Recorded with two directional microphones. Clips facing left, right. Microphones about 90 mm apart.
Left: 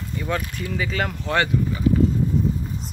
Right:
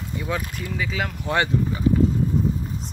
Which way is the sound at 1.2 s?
20° right (ahead or behind).